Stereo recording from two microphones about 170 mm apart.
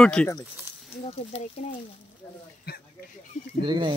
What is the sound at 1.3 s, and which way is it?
Speech, 35° left (ahead or behind).